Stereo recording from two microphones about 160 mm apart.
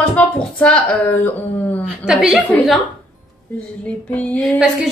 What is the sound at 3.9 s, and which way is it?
Speech, 5° left (ahead or behind).